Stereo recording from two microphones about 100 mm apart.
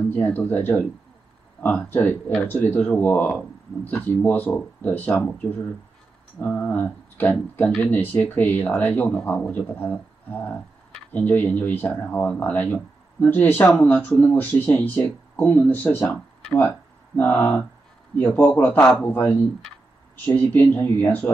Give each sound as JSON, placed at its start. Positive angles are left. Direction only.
{"t": 0.1, "sound": "a man's voice", "side_deg": 20}